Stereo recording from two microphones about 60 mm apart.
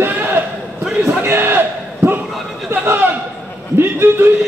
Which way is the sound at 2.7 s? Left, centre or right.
Right.